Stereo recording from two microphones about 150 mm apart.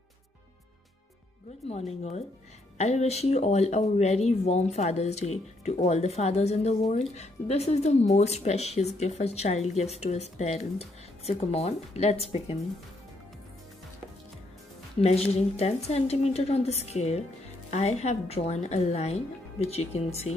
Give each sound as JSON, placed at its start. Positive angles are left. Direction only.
{"t": 1.7, "sound": "speech", "side_deg": 45}
{"t": 15.0, "sound": "speech", "side_deg": 45}